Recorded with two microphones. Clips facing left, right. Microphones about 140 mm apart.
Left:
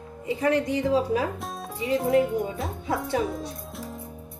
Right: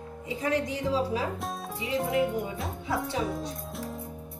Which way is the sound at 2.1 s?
Centre (ahead or behind).